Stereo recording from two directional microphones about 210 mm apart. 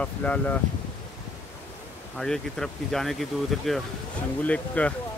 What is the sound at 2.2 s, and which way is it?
Speech, centre (ahead or behind).